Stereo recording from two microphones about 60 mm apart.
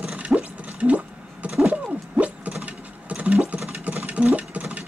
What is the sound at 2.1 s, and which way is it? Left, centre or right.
Mechanisms, right.